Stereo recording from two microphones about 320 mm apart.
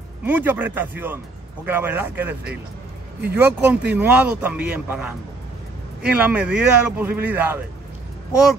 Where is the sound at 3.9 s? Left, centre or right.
Centre.